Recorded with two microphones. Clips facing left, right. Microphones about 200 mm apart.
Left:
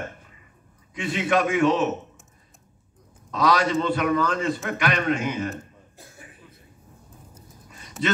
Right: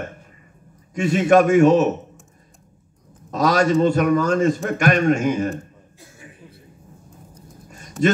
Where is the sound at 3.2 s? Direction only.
45° right (ahead or behind).